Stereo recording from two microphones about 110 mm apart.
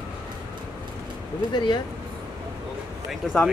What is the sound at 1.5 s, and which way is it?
Speech, 45° left (ahead or behind).